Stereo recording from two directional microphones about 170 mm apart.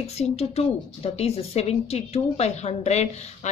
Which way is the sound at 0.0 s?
40° left (ahead or behind).